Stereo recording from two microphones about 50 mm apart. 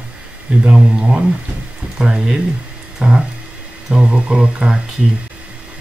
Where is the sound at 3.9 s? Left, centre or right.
Right.